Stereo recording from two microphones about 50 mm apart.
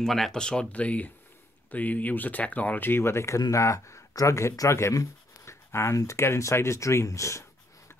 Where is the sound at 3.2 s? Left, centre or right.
Left.